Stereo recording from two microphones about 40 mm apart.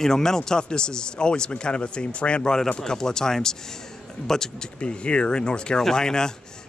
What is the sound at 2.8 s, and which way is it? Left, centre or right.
Speech, centre.